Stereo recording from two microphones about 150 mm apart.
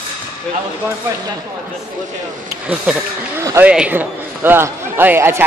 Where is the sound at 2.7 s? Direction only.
5° right (ahead or behind).